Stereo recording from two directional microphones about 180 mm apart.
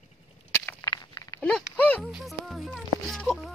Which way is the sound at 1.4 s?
5° left (ahead or behind).